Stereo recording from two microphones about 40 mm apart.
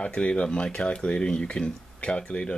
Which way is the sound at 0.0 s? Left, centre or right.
Left.